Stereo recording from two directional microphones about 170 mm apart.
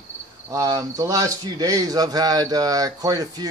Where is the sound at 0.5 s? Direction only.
20° right (ahead or behind).